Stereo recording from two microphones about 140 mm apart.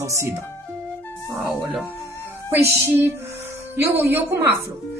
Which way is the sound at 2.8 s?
15° right (ahead or behind).